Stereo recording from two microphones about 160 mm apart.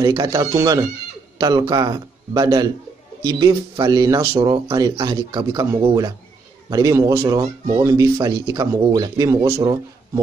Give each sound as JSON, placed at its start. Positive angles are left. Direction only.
{"t": 0.0, "sound": "speech", "side_deg": -25}